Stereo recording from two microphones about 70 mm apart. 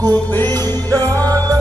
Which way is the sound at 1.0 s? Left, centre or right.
Right.